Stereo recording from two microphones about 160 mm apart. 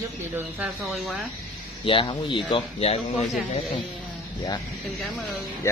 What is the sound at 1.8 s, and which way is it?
A man's voice, 30° left (ahead or behind).